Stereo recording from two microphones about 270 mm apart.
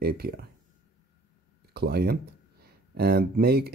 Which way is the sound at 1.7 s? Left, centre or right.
Right.